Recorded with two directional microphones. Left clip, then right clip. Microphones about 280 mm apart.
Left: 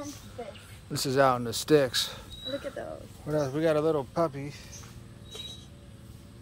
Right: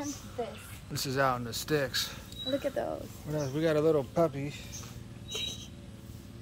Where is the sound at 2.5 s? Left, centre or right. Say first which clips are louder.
Right 4 dB; right.